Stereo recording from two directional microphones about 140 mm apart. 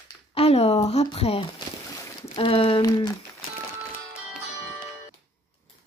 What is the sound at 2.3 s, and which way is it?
Speech, 40° left (ahead or behind).